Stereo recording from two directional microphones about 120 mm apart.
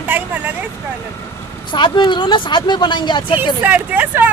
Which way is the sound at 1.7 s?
40° left (ahead or behind).